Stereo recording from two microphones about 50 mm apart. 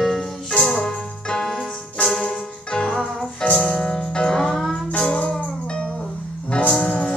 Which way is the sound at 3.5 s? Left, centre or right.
Left.